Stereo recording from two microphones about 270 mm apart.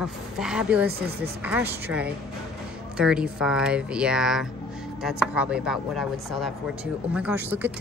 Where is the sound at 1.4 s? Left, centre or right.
Centre.